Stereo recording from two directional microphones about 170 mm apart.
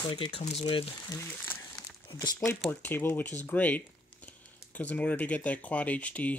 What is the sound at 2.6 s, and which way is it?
Speech, 10° left (ahead or behind).